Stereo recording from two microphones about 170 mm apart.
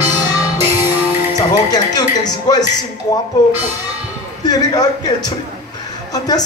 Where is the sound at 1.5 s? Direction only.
25° left (ahead or behind).